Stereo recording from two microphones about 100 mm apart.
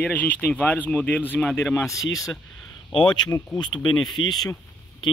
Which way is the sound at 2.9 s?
50° left (ahead or behind).